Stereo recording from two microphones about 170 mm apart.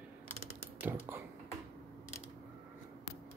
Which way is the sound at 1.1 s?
15° right (ahead or behind).